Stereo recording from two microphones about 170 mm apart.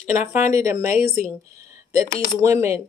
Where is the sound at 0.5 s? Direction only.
15° right (ahead or behind).